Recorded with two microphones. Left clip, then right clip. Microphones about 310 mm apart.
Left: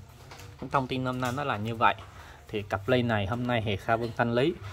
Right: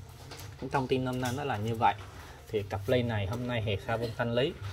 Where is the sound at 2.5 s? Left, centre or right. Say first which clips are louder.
Left 2 dB; centre.